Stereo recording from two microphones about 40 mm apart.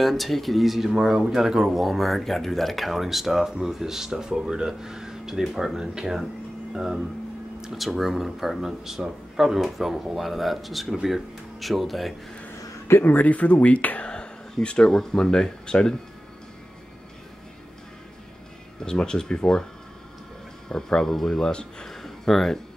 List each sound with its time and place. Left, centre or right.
0.0 s speech: centre
1.7 s speech: centre
13.0 s speech: left
14.1 s a sound: left
14.9 s speech: centre
18.8 s speech: centre
20.6 s speech: centre
21.5 s speech: left
21.8 s a sound: centre